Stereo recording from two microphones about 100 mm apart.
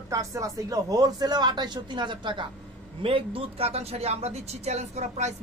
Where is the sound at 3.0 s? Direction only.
65° right (ahead or behind); by 4.9 s 90° right.